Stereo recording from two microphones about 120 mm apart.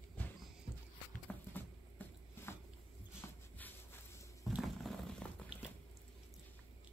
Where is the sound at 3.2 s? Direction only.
20° left (ahead or behind).